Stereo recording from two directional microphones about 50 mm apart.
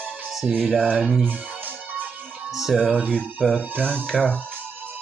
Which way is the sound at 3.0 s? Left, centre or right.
Right.